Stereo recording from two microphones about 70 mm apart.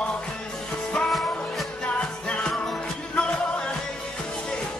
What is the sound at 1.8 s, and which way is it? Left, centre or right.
Music, centre.